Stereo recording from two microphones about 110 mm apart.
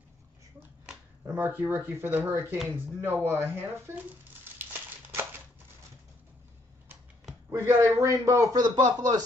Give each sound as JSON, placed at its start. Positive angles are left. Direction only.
{"t": 1.2, "sound": "speech", "side_deg": -20}
{"t": 7.5, "sound": "speech", "side_deg": -25}